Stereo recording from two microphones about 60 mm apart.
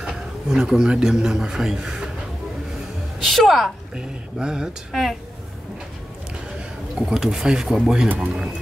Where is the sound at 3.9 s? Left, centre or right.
Centre.